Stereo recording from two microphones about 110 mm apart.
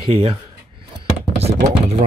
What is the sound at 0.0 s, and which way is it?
Speech, 60° right (ahead or behind).